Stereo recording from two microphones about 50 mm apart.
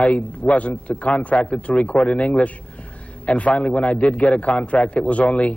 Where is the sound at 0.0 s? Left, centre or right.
Left.